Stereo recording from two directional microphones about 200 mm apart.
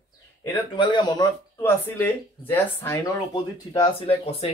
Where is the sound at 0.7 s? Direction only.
20° left (ahead or behind).